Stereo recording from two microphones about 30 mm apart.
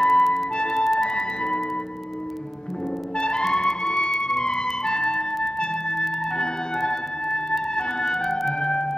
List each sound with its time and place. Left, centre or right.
0.0 s music: centre
1.1 s music: left
3.2 s music: left
8.2 s music: centre
8.5 s music: left